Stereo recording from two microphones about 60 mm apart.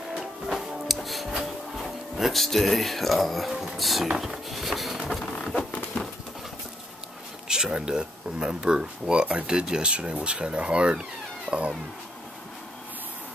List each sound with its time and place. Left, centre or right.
0.5 s music: centre
1.3 s speech: centre
4.5 s a sound: centre
5.2 s patter: centre
7.4 s speech: centre